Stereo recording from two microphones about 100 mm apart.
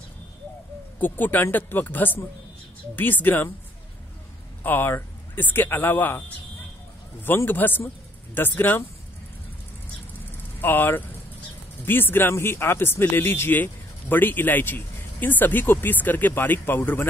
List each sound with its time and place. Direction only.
0.9 s speech: 20° left (ahead or behind)
4.6 s speech: 20° left (ahead or behind)
10.6 s speech: 20° left (ahead or behind)